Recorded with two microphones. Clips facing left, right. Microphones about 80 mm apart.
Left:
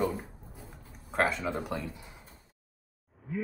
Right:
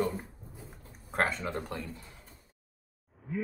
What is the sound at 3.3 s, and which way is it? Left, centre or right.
Speech, centre.